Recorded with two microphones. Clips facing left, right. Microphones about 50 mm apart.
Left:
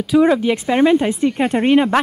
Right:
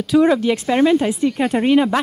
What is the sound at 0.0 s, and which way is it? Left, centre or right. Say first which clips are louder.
A woman's voice: left 1 dB; centre.